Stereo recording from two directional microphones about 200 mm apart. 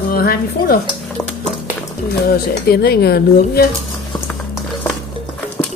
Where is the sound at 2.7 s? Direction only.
50° left (ahead or behind).